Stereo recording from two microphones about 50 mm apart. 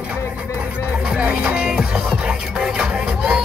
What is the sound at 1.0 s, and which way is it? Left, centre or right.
Music, right.